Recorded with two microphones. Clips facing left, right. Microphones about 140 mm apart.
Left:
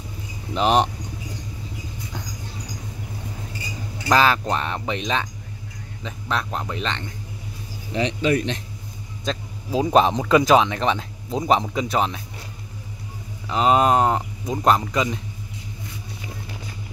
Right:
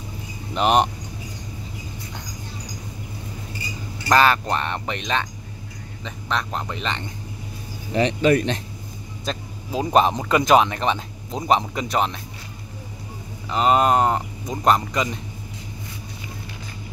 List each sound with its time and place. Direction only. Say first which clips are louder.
0.6 s speech: even; 5° right (ahead or behind)
4.1 s speech: right 1 dB; centre (ahead or behind)
7.9 s speech: right 3 dB; 50° right (ahead or behind)
9.2 s speech: left 2 dB; centre (ahead or behind)
13.5 s speech: even; centre (ahead or behind)